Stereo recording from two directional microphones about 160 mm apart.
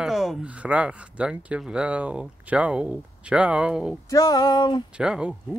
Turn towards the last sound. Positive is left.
turn(degrees=-5)  # may be behind; listen again after turning